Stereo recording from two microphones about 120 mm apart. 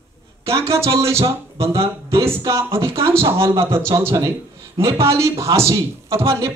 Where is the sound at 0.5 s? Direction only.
20° right (ahead or behind).